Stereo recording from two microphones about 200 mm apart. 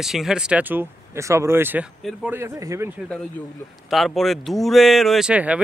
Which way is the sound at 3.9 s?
Centre (ahead or behind).